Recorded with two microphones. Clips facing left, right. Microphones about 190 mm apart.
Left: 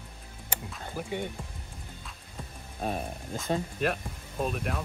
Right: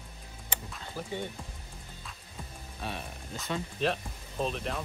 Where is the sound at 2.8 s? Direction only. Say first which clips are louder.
Left 7 dB; 45° left (ahead or behind).